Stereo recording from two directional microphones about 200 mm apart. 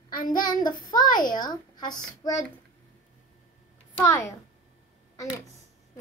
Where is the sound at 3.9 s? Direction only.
10° left (ahead or behind).